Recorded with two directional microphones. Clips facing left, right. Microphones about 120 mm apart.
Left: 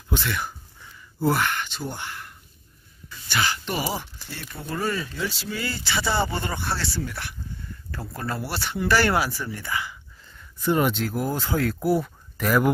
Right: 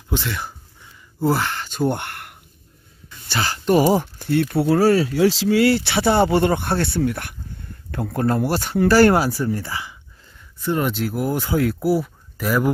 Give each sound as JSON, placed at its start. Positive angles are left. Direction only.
{"t": 0.1, "sound": "speech", "side_deg": -25}
{"t": 1.7, "sound": "a sound", "side_deg": -60}
{"t": 3.3, "sound": "speech", "side_deg": -35}
{"t": 9.7, "sound": "speech", "side_deg": -25}
{"t": 10.6, "sound": "speech", "side_deg": 0}
{"t": 11.0, "sound": "speech", "side_deg": -15}